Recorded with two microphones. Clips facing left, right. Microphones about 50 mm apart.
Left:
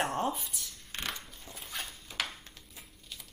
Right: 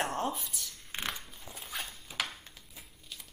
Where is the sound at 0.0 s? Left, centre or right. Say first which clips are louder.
Left 1 dB; centre.